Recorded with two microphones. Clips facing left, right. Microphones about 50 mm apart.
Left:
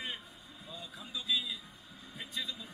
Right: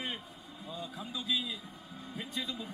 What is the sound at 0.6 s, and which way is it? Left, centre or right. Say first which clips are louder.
A man's voice: right 6 dB; right.